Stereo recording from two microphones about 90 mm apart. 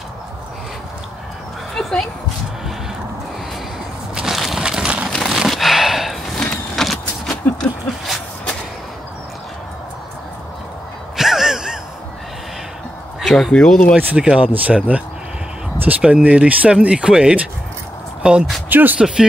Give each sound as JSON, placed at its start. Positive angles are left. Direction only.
{"t": 1.8, "sound": "dog", "side_deg": 5}
{"t": 4.1, "sound": "a sound", "side_deg": -5}
{"t": 6.5, "sound": "vehicle", "side_deg": 5}
{"t": 11.1, "sound": "gasp", "side_deg": -5}
{"t": 13.2, "sound": "a sound", "side_deg": 0}
{"t": 13.5, "sound": "speech", "side_deg": 10}
{"t": 13.9, "sound": "speech", "side_deg": -15}
{"t": 18.7, "sound": "speech", "side_deg": -20}
{"t": 18.9, "sound": "speech", "side_deg": -5}